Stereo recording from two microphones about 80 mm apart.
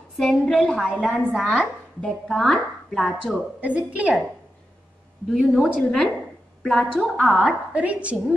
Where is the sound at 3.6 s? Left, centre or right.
Centre.